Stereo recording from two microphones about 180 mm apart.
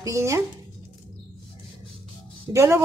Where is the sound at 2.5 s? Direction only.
15° right (ahead or behind).